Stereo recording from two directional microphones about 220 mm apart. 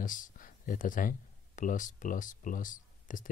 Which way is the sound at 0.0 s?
35° left (ahead or behind).